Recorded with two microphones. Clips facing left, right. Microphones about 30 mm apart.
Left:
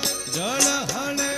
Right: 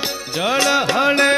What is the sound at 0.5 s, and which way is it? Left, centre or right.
Music, right.